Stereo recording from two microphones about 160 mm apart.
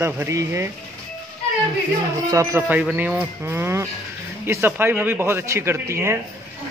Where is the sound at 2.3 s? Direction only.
20° right (ahead or behind).